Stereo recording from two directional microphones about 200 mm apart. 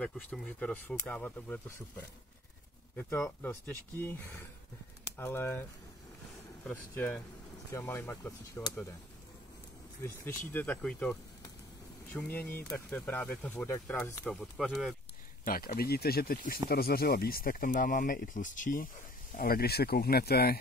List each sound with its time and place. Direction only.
0.0 s speech: 5° left (ahead or behind)
10.0 s speech: 10° left (ahead or behind)
15.4 s speech: 45° left (ahead or behind)